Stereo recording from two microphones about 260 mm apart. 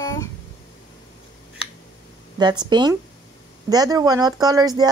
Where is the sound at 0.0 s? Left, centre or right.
Centre.